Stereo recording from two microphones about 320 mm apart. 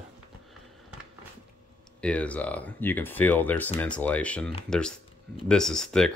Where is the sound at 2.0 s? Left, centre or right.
Centre.